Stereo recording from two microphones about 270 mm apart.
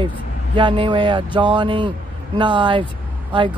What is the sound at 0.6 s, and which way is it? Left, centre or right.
Speech, centre.